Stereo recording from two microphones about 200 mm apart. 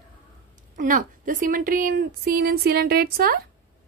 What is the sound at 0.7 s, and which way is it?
A woman's voice, 40° right (ahead or behind).